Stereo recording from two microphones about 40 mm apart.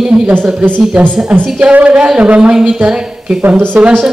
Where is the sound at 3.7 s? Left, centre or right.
Right.